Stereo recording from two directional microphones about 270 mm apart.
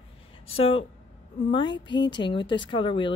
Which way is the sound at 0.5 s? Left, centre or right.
Left.